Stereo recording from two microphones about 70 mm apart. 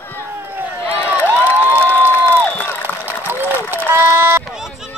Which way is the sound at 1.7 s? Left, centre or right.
Right.